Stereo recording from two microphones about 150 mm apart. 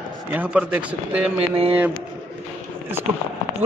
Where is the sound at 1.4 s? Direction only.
40° right (ahead or behind).